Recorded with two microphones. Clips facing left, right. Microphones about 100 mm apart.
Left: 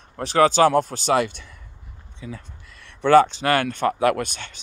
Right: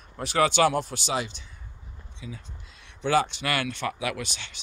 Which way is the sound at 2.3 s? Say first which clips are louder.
Left 6 dB; 60° left (ahead or behind).